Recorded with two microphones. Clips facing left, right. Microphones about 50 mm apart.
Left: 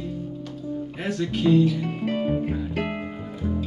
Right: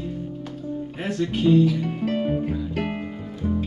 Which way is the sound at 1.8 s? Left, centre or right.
Centre.